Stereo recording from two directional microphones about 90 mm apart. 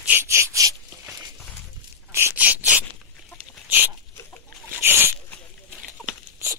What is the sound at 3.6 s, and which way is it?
Dog, 20° right (ahead or behind).